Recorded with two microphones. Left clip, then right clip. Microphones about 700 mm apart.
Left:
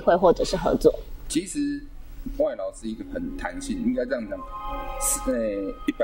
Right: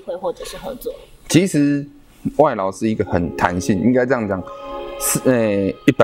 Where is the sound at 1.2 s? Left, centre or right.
Right.